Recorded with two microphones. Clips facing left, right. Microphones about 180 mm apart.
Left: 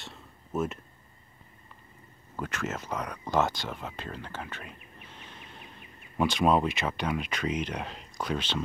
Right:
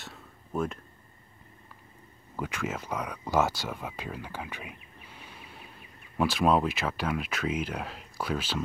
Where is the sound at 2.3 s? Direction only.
10° right (ahead or behind).